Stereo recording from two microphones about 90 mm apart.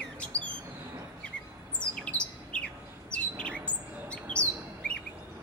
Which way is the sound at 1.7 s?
10° left (ahead or behind).